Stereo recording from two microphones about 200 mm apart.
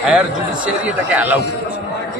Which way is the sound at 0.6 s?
5° right (ahead or behind).